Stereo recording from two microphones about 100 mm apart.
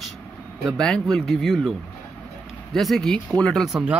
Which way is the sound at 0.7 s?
5° left (ahead or behind).